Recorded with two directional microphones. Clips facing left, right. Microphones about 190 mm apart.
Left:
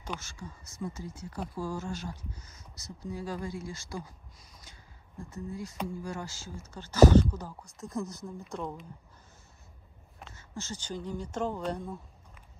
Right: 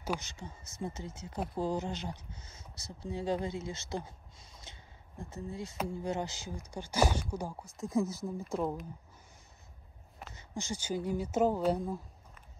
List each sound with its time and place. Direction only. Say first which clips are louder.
0.2 s speech: left 1 dB; 20° right (ahead or behind)
7.6 s speech: right 5 dB; centre (ahead or behind)
10.3 s speech: right 2 dB; 15° right (ahead or behind)